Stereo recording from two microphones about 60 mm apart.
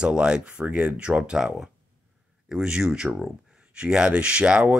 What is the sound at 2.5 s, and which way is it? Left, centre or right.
Speech, centre.